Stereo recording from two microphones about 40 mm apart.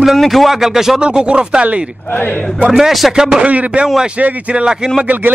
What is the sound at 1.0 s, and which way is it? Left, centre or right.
Speech, right.